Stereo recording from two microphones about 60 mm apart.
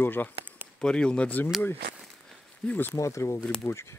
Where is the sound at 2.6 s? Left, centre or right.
Centre.